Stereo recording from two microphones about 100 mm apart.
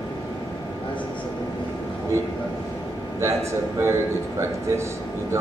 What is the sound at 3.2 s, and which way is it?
Speech, 30° right (ahead or behind).